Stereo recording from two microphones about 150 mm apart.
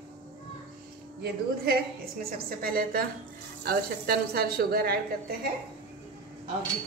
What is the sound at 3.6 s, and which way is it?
Speech, 90° right.